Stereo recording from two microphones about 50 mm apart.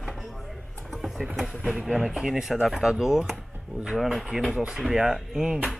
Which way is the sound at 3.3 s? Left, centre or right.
Centre.